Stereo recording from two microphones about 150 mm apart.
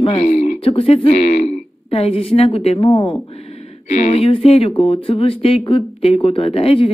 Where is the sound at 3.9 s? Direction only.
50° left (ahead or behind).